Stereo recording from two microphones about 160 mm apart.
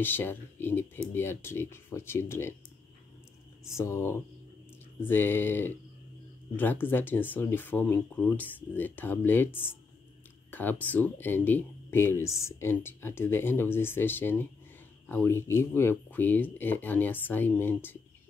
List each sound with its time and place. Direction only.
0.0 s speech: 15° left (ahead or behind)
3.6 s speech: 15° left (ahead or behind)